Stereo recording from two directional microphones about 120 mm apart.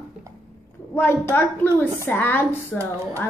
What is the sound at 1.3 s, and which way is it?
A woman's voice, 15° left (ahead or behind).